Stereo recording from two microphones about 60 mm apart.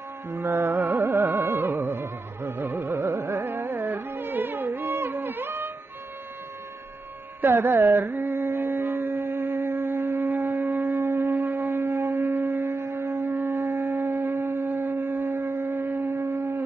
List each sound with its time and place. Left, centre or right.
0.3 s speech: right
0.7 s carnatic music: right
7.4 s speech: right
8.3 s a sound: right
11.1 s shofar: right
12.4 s shofar: right
13.9 s shofar: right
14.9 s shofar: right
16.1 s shofar: right